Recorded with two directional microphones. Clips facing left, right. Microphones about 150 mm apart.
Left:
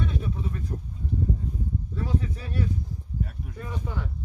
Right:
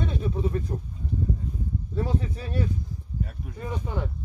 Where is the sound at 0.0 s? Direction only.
30° right (ahead or behind).